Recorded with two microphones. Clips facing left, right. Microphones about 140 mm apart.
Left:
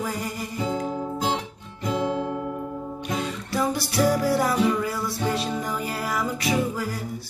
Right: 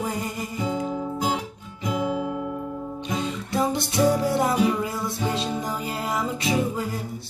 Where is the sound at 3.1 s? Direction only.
20° right (ahead or behind).